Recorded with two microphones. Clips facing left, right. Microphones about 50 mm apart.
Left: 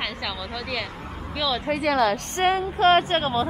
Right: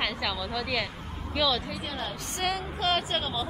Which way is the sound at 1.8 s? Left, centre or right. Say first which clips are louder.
Left 14 dB; left.